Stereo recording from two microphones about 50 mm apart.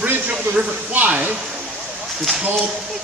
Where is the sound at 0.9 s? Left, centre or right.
Right.